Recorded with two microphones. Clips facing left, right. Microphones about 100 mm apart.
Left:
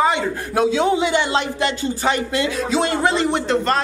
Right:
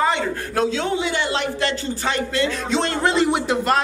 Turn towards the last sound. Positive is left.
turn(degrees=-5)  # may be behind; listen again after turning